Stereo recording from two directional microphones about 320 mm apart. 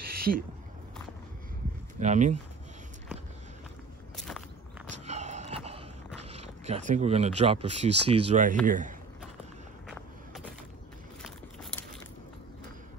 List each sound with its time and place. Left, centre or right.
0.1 s a sound: right
2.0 s speech: right
4.2 s walk: centre
4.8 s a sound: right
6.1 s speech: centre
9.8 s walk: centre